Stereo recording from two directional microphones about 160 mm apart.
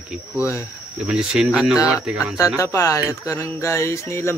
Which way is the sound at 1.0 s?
5° right (ahead or behind).